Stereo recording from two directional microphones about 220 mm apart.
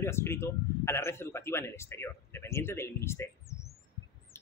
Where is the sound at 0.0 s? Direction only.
10° left (ahead or behind).